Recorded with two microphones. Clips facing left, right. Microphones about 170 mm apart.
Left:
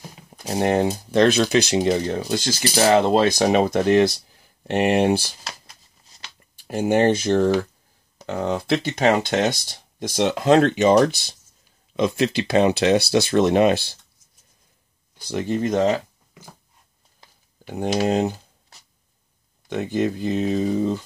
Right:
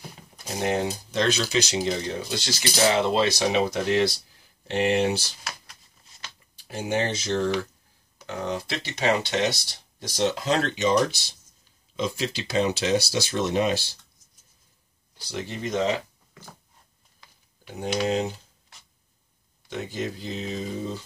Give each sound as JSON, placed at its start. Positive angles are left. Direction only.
{"t": 0.6, "sound": "speech", "side_deg": 55}
{"t": 6.7, "sound": "speech", "side_deg": 50}
{"t": 15.2, "sound": "speech", "side_deg": 50}
{"t": 18.0, "sound": "typing", "side_deg": 50}
{"t": 19.7, "sound": "speech", "side_deg": 60}